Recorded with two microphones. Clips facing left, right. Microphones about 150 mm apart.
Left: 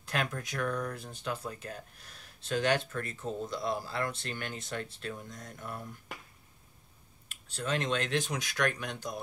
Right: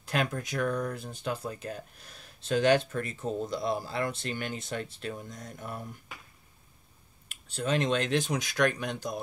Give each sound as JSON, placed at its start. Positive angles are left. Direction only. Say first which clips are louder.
{"t": 0.1, "sound": "speech", "louder": "right 4 dB", "side_deg": -20}
{"t": 7.5, "sound": "speech", "louder": "right 4 dB", "side_deg": -20}